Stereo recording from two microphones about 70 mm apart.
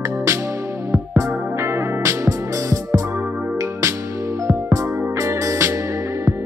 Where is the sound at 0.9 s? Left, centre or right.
Right.